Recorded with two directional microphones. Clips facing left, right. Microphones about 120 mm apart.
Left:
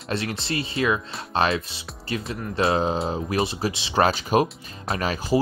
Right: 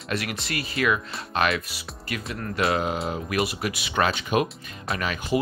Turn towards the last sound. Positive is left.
turn(degrees=35)  # may be behind; listen again after turning